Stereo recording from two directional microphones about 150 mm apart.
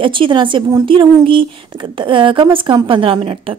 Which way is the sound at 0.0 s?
35° right (ahead or behind).